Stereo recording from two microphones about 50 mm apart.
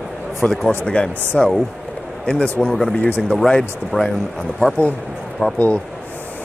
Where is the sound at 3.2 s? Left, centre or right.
Centre.